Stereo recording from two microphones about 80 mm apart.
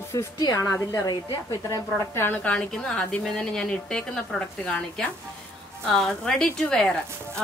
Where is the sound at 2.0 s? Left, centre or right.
Left.